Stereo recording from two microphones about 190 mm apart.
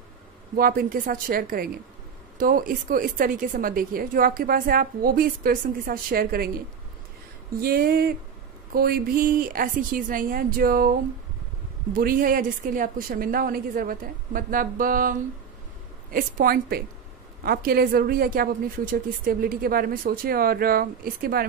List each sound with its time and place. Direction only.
0.6 s a woman's voice: 50° right (ahead or behind)
7.6 s a woman's voice: 50° right (ahead or behind)